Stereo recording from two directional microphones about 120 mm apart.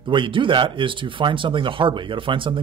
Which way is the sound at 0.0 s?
45° right (ahead or behind).